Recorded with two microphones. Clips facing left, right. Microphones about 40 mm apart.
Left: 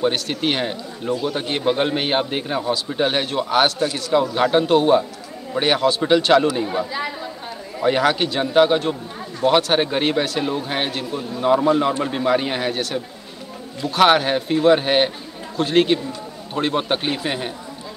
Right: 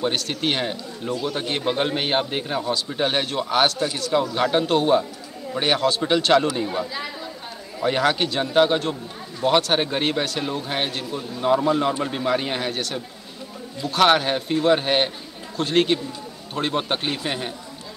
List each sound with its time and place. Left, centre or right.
0.0 s speech: centre